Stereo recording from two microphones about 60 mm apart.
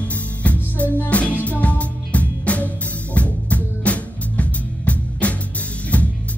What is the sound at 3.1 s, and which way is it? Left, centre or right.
Drum kit, left.